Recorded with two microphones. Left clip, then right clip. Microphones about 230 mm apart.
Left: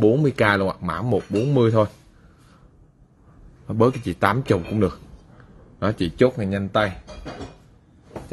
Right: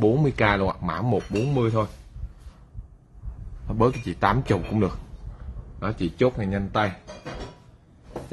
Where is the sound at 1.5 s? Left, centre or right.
Left.